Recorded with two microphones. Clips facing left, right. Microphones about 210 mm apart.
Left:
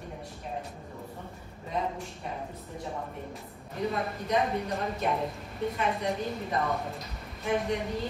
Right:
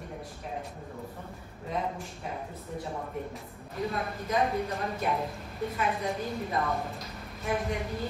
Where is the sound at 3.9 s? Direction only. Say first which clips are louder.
Left 3 dB; centre (ahead or behind).